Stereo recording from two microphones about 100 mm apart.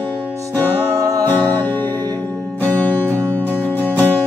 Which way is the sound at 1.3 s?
20° left (ahead or behind).